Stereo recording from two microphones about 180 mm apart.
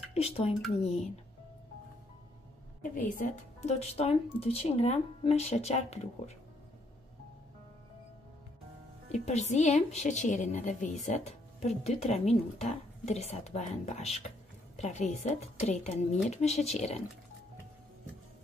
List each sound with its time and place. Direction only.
0.1 s speech: 35° left (ahead or behind)
2.8 s a woman's voice: 50° left (ahead or behind)
9.1 s speech: 40° left (ahead or behind)